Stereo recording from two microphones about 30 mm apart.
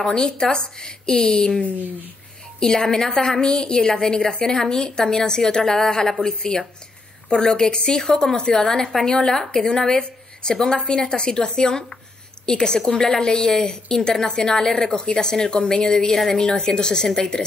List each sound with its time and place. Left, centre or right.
0.0 s a woman's voice: left
2.6 s a woman's voice: left